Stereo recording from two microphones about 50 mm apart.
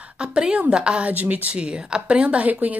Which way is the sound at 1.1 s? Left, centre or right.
Right.